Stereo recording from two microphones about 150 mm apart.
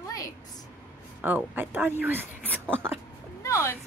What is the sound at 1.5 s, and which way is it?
Speech, 15° right (ahead or behind).